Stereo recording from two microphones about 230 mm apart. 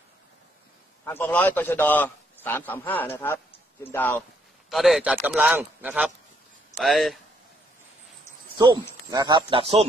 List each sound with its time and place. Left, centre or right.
1.0 s a man's voice: centre
8.5 s speech: centre